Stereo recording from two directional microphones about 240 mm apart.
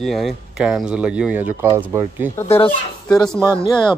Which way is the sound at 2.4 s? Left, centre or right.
Left.